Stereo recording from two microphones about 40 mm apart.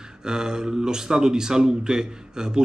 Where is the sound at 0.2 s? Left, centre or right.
Centre.